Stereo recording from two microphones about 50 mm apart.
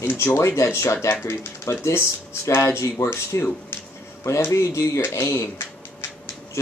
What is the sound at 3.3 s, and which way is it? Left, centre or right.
Speech, left.